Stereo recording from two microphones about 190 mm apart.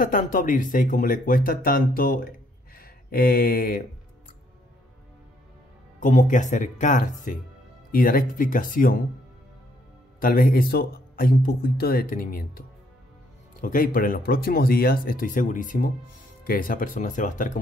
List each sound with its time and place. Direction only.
0.0 s speech: 45° left (ahead or behind)
5.9 s speech: 40° left (ahead or behind)
10.2 s speech: 50° left (ahead or behind)